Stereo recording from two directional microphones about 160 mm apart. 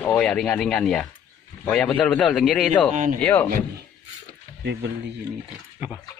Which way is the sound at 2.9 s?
50° right (ahead or behind).